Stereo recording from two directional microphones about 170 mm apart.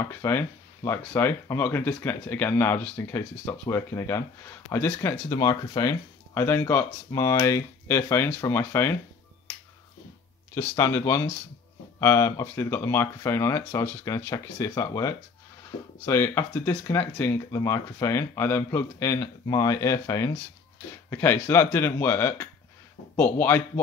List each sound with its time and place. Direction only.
0.0 s speech: 15° left (ahead or behind)
10.5 s speech: 20° left (ahead or behind)